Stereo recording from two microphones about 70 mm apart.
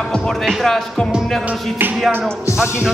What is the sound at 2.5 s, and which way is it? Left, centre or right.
Speech, centre.